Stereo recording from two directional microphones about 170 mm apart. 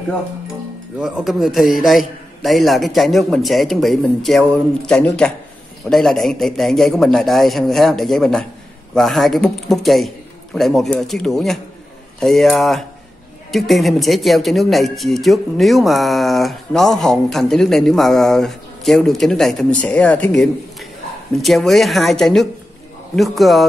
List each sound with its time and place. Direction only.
0.9 s a man's voice: 5° right (ahead or behind)